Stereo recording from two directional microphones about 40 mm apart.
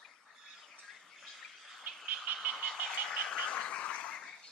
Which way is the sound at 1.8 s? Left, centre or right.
Right.